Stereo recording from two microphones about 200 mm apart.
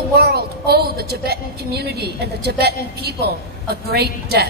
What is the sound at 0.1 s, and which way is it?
A woman's voice, 50° right (ahead or behind).